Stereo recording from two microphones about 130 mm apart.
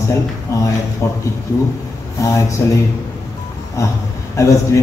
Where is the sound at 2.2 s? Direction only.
25° left (ahead or behind).